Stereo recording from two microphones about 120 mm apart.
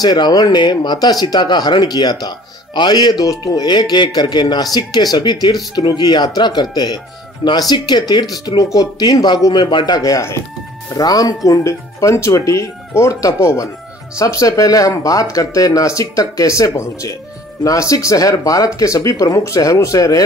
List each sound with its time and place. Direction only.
0.0 s speech: 35° left (ahead or behind)